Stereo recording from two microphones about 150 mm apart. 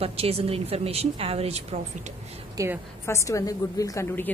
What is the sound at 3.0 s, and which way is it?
A woman's voice, 20° left (ahead or behind).